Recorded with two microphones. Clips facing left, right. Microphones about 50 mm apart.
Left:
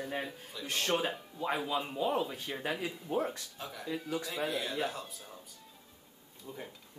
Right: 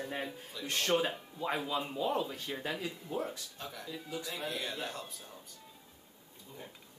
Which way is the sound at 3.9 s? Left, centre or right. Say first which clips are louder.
Left 7 dB; left.